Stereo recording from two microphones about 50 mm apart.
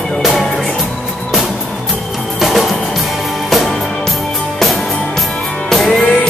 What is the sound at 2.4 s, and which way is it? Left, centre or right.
Music, centre.